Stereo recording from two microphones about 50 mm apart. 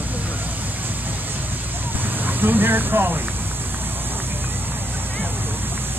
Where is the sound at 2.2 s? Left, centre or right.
Right.